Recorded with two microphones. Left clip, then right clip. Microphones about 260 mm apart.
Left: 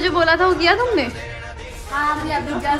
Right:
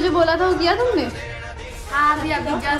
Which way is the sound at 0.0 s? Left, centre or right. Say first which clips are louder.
Left 1 dB; centre.